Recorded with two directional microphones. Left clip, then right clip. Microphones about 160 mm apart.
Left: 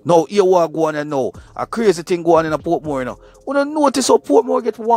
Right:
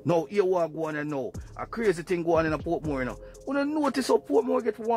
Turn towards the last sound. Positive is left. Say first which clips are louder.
# left 9 dB
turn(degrees=35)  # may be behind; listen again after turning